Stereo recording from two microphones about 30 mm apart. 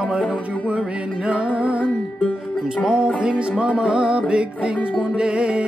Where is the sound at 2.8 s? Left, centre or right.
Right.